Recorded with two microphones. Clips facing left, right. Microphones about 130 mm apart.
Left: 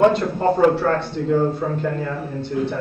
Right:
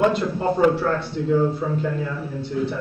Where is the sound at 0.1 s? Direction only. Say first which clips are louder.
Left 3 dB; 55° left (ahead or behind).